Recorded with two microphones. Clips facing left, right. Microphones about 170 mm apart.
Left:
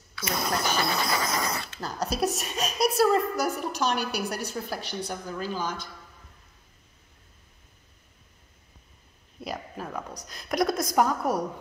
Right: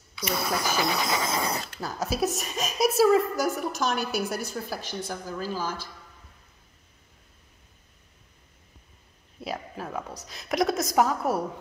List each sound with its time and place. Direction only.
0.3 s speech: 5° right (ahead or behind)
1.4 s speech: 35° right (ahead or behind)
1.8 s a woman's voice: 5° right (ahead or behind)
9.4 s a woman's voice: 5° right (ahead or behind)